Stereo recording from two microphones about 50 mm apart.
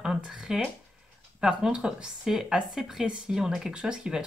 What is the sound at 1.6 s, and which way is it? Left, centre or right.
Speech, centre.